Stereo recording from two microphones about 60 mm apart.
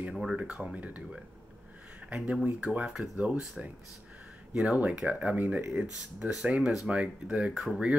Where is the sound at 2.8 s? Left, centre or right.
Centre.